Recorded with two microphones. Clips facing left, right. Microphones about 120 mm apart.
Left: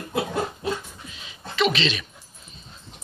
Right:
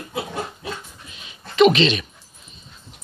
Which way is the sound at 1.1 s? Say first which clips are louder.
Even; 20° right (ahead or behind).